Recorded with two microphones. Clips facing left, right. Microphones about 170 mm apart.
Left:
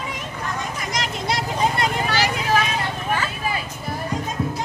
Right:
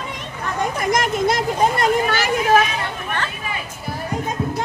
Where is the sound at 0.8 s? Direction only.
50° right (ahead or behind).